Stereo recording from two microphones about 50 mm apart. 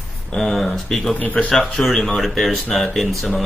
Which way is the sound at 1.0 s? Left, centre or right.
Left.